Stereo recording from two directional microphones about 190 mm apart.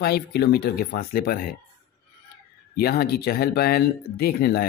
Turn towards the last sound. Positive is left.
turn(degrees=55)  # may be behind; listen again after turning